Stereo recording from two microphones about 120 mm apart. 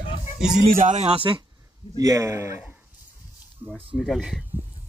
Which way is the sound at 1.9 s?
30° right (ahead or behind).